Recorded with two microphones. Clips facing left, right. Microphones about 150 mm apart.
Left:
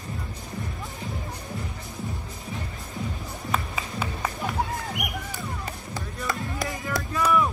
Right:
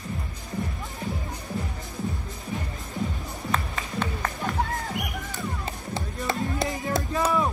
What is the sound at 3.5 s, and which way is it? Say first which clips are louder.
Music: even; 10° left (ahead or behind).